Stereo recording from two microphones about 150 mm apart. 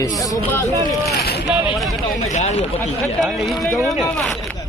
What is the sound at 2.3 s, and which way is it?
Speech, 50° left (ahead or behind).